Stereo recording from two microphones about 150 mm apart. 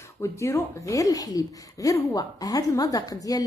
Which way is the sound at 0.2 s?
20° left (ahead or behind).